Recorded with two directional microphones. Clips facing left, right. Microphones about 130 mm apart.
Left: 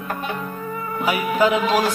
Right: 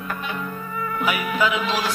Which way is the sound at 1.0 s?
35° left (ahead or behind).